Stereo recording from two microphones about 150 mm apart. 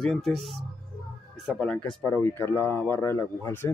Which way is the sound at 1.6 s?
5° left (ahead or behind).